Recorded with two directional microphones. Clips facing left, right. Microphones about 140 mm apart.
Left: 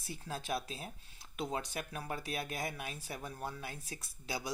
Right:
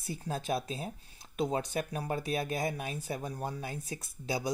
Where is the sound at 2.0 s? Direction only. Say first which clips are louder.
Right 5 dB; 25° right (ahead or behind).